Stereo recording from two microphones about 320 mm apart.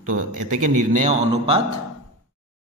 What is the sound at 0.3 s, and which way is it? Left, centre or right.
Speech, right.